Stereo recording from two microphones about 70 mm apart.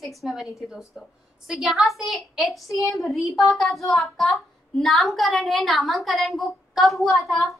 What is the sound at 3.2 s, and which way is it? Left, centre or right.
Speech, left.